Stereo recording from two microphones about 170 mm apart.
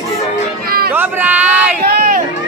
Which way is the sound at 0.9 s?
10° right (ahead or behind).